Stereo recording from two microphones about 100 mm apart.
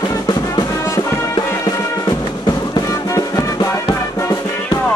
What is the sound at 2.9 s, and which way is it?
Music, 35° left (ahead or behind).